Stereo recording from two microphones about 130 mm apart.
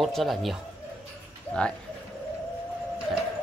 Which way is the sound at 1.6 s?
10° left (ahead or behind).